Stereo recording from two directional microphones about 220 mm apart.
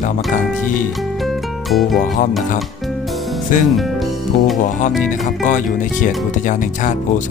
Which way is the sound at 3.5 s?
35° left (ahead or behind).